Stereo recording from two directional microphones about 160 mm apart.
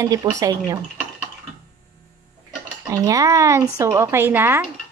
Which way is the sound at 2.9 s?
20° right (ahead or behind).